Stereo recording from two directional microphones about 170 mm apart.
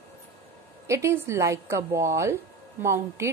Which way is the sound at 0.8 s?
15° right (ahead or behind).